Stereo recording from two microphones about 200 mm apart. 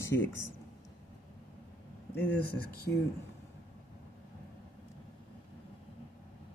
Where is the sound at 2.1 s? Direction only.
10° left (ahead or behind).